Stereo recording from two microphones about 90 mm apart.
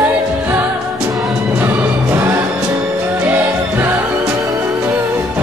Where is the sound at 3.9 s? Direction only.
35° right (ahead or behind).